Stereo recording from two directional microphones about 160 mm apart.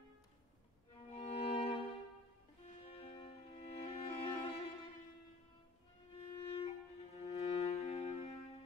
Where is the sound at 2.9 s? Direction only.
35° left (ahead or behind).